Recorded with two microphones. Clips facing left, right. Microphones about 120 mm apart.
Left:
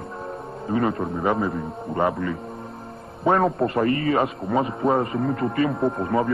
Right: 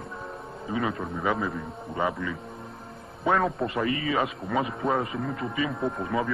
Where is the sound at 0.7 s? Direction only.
55° left (ahead or behind).